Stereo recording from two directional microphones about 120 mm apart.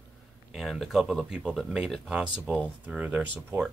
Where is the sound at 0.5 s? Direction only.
Centre (ahead or behind).